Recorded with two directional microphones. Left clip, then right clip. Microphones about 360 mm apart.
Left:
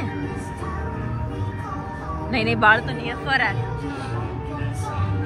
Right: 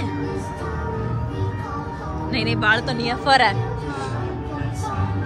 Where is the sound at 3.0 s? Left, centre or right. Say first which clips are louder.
Right 5 dB; centre.